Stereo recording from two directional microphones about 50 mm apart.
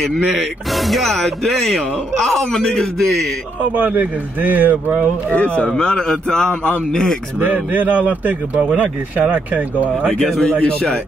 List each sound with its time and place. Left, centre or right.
0.4 s speech: centre
3.7 s speech: right
5.7 s a man's voice: centre
7.3 s speech: right
10.0 s a man's voice: centre